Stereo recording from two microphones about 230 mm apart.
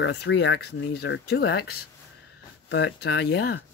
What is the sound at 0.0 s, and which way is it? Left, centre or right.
Speech, left.